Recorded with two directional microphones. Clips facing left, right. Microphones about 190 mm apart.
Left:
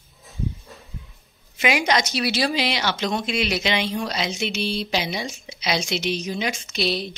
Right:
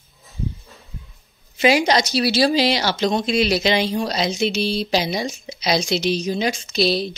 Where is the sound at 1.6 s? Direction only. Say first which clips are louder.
Right 5 dB; 30° right (ahead or behind).